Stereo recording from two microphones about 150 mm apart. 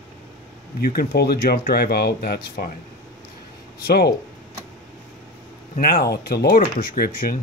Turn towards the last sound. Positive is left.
turn(degrees=80)